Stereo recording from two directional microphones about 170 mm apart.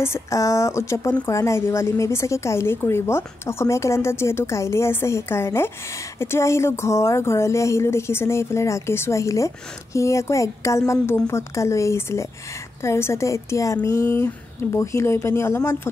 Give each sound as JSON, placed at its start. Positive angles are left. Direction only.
{"t": 0.0, "sound": "speech", "side_deg": 15}